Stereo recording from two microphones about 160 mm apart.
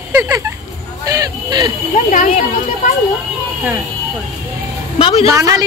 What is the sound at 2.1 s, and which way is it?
Speech, 50° left (ahead or behind).